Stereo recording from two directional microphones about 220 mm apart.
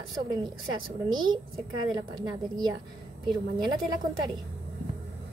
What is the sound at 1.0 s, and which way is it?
A woman's voice, 20° right (ahead or behind).